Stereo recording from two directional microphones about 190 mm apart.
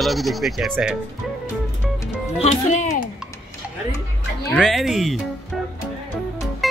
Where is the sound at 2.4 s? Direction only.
35° left (ahead or behind).